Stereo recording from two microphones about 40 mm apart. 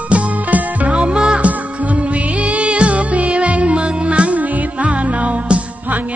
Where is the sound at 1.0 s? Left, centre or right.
Right.